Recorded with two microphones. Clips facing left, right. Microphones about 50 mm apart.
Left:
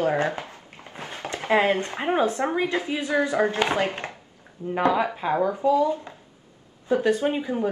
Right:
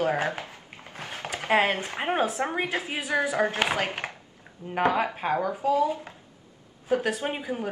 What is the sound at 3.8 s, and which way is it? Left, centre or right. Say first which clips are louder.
A man's voice: left 3 dB; right.